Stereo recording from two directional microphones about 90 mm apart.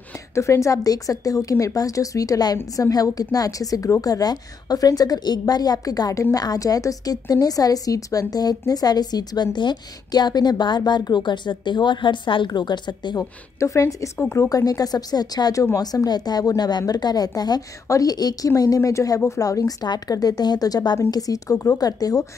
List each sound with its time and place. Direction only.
0.3 s a woman's voice: 35° left (ahead or behind); by 12.4 s 65° left (ahead or behind)
12.4 s a woman's voice: 55° left (ahead or behind)
13.2 s a woman's voice: 30° left (ahead or behind)
14.5 s a woman's voice: 40° left (ahead or behind)